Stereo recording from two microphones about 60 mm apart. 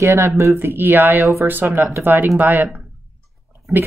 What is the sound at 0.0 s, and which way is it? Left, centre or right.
Speech, right.